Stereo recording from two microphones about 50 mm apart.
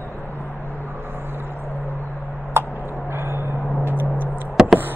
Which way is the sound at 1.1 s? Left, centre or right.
Right.